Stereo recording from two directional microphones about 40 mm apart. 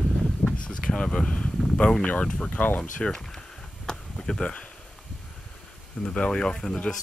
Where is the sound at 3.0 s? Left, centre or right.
Centre.